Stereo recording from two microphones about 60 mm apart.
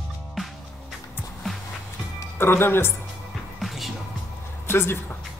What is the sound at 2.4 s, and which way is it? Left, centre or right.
Speech, left.